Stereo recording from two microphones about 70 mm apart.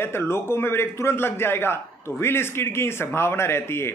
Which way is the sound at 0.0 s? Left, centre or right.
Left.